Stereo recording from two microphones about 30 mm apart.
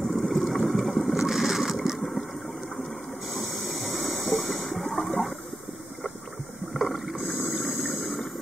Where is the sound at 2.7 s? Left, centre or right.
Centre.